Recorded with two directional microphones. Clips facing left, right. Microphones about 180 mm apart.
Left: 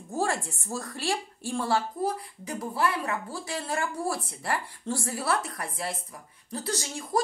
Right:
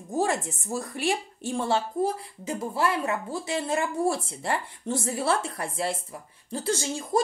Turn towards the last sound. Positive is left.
turn(degrees=-25)  # may be behind; listen again after turning